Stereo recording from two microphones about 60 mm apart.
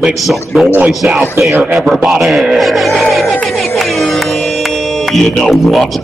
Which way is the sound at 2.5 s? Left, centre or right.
Centre.